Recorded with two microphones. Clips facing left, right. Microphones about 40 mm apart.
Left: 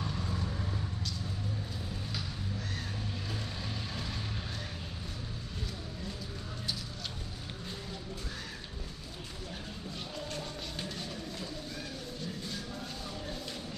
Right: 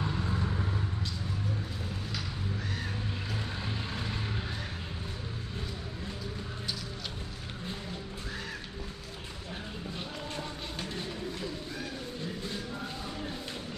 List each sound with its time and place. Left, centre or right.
0.0 s vehicle: right
3.6 s vehicle: right
10.3 s music: right
12.4 s music: right